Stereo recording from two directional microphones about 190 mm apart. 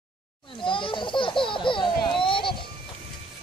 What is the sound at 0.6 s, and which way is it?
Baby laughter, 25° left (ahead or behind).